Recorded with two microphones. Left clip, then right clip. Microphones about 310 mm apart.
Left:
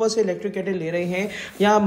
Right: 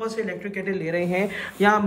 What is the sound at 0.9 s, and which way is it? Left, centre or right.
Speech, centre.